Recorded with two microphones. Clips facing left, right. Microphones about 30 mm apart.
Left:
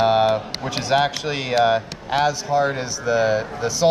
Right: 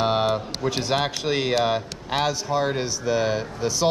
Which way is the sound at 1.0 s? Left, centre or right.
Centre.